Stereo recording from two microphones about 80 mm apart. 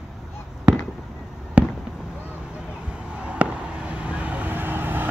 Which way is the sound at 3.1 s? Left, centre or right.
Centre.